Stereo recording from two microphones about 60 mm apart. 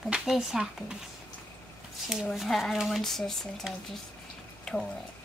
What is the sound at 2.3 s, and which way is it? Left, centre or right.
A woman's voice, centre.